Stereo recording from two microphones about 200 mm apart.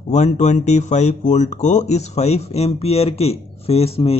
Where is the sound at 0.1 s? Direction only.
35° left (ahead or behind).